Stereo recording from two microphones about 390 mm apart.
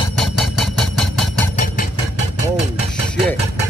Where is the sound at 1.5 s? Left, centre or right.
Centre.